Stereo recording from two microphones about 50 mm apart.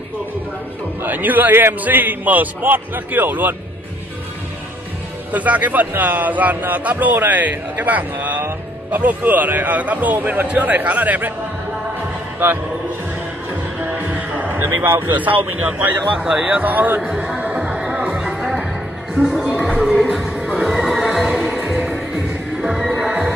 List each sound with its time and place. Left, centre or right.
1.0 s a man's voice: right
5.3 s a man's voice: right
13.7 s music: right
15.1 s a man's voice: right
16.2 s speech: right
16.6 s a man's voice: right
17.4 s music: right
19.1 s a sound: centre
20.1 s music: centre
20.7 s music: centre
22.6 s music: centre